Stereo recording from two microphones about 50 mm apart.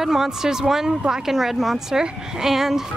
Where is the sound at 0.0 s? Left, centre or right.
Centre.